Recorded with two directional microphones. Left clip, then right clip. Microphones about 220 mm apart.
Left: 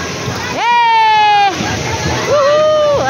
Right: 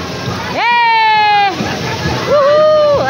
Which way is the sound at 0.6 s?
Centre (ahead or behind).